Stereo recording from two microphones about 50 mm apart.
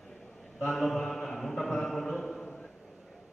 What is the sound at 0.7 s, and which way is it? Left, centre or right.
Mantra, centre.